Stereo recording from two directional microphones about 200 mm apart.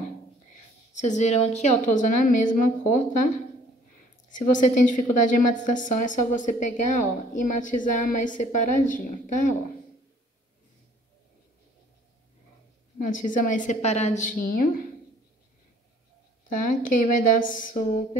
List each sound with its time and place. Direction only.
1.0 s a woman's voice: 35° left (ahead or behind)
4.3 s a woman's voice: 40° left (ahead or behind)
13.0 s a woman's voice: 40° left (ahead or behind)
16.4 s a woman's voice: 40° left (ahead or behind)